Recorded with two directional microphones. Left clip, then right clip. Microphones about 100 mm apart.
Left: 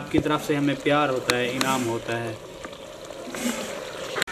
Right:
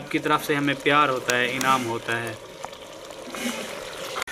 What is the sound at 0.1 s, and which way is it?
Speech, 30° right (ahead or behind).